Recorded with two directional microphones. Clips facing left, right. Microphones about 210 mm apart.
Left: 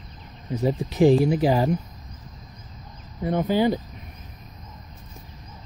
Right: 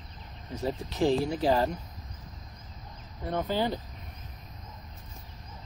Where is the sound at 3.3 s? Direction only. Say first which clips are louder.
Left 8 dB; 15° left (ahead or behind).